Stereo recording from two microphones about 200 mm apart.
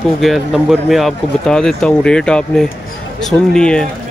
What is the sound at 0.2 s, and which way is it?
Speech, centre (ahead or behind).